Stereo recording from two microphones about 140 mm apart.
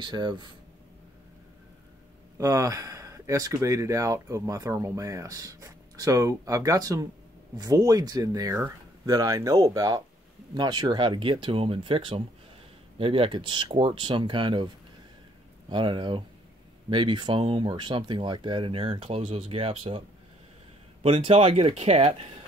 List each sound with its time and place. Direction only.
0.0 s speech: 35° right (ahead or behind)
2.3 s speech: 25° right (ahead or behind)
15.7 s speech: 35° right (ahead or behind)
21.0 s speech: 45° right (ahead or behind)